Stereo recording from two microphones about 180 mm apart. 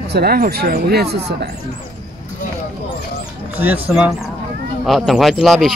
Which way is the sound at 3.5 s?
10° right (ahead or behind).